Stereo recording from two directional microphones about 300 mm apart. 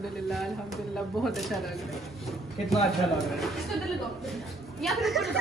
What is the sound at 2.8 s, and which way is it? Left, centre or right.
Speech, centre.